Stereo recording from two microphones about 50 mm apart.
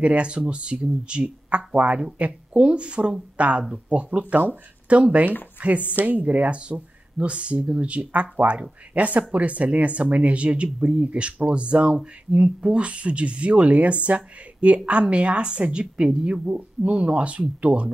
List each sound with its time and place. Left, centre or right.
0.0 s speech: right